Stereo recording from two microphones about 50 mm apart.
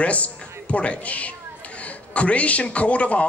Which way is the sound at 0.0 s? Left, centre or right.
Left.